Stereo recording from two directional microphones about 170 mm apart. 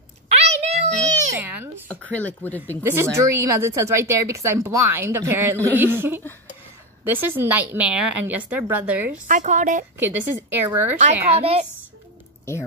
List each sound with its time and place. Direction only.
0.6 s music: 40° right (ahead or behind)
1.4 s a sound: 10° right (ahead or behind)
1.9 s speech: 10° left (ahead or behind)
2.8 s a woman's voice: 15° right (ahead or behind)
9.3 s speech: 45° right (ahead or behind)
9.9 s a woman's voice: 15° right (ahead or behind)
11.0 s a child's voice: 40° right (ahead or behind)